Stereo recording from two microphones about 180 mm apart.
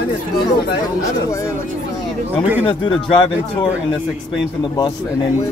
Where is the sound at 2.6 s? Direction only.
30° left (ahead or behind).